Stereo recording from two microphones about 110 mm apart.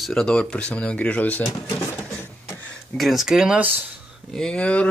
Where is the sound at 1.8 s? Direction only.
20° left (ahead or behind).